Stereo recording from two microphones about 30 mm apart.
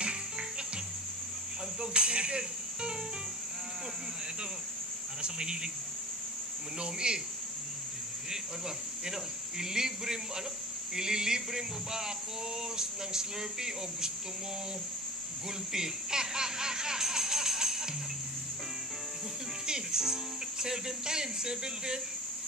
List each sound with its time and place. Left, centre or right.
1.8 s speech: right
5.2 s speech: right
6.8 s speech: right
9.0 s speech: centre
15.7 s music: right
19.6 s music: right
20.6 s speech: right